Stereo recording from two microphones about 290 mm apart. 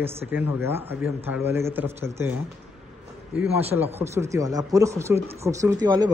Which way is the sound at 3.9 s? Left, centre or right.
Centre.